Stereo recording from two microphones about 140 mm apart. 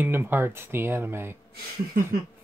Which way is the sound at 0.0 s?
15° right (ahead or behind).